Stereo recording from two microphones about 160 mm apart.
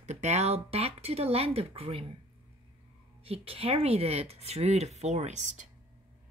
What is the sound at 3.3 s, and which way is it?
Speech, 40° right (ahead or behind).